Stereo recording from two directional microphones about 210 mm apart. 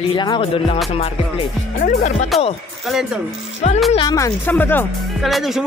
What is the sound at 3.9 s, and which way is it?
Speech, 20° left (ahead or behind).